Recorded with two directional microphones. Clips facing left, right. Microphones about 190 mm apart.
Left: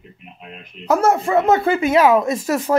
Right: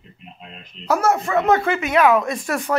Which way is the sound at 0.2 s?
10° left (ahead or behind).